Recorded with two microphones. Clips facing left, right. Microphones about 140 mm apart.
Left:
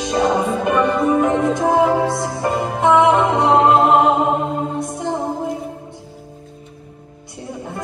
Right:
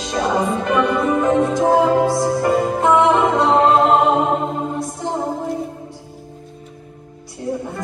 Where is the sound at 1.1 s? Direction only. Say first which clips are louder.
Even; 15° left (ahead or behind).